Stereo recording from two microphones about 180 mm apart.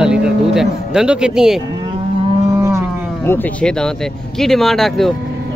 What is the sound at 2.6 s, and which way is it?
Moo, 15° right (ahead or behind).